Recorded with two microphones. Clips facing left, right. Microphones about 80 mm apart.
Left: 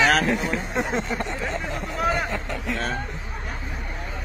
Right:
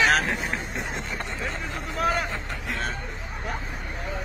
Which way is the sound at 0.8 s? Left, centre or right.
Left.